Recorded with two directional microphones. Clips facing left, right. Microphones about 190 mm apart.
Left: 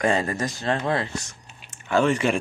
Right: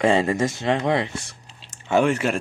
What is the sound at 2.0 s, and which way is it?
Speech, 5° right (ahead or behind).